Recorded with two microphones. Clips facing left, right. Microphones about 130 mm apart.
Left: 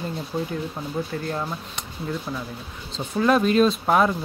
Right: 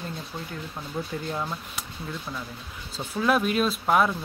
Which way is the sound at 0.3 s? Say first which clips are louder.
Left 10 dB; 20° left (ahead or behind).